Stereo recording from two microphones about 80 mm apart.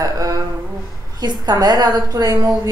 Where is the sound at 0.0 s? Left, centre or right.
Right.